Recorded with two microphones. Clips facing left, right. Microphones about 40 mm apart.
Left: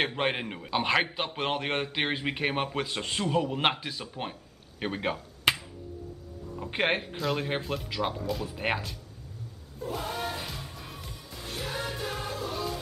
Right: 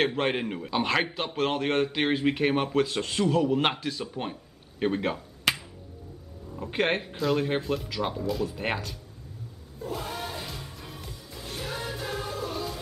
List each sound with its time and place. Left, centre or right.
0.0 s speech: centre
5.5 s finger snapping: centre
6.5 s speech: centre
9.8 s music: centre